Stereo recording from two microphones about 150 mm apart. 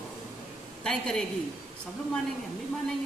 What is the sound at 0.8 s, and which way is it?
Speech, 5° left (ahead or behind).